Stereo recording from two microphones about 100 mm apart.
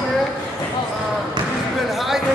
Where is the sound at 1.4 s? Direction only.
55° right (ahead or behind).